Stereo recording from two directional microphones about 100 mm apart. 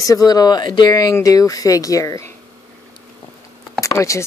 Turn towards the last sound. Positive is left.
turn(degrees=30)  # may be behind; listen again after turning